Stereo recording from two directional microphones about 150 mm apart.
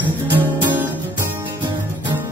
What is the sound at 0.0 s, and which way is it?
Music, 10° right (ahead or behind).